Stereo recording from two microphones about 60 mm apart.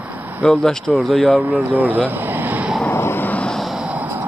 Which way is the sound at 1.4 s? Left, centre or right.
Right.